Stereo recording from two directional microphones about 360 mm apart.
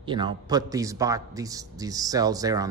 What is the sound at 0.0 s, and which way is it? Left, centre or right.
Speech, centre.